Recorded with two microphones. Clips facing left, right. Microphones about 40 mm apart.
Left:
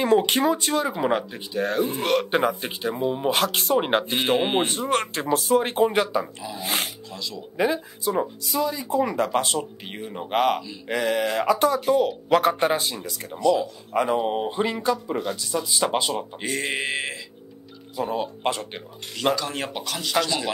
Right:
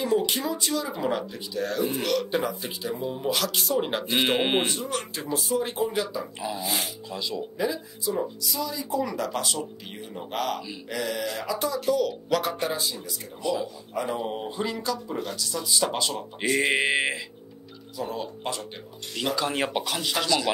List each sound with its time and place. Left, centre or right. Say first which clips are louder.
0.0 s speech: left 6 dB; left
4.2 s speech: right 1 dB; right
4.6 s speech: left 6 dB; left
7.1 s speech: right 3 dB; centre
7.5 s speech: left 9 dB; left
11.8 s speech: left 4 dB; left
13.4 s speech: left 7 dB; centre
14.2 s speech: left 6 dB; left
16.3 s speech: right 4 dB; centre
18.0 s speech: left 6 dB; left
19.3 s speech: right 2 dB; centre